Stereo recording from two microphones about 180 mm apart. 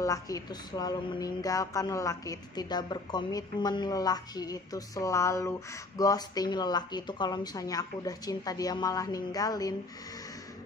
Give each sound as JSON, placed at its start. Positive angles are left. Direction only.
{"t": 0.0, "sound": "speech", "side_deg": 20}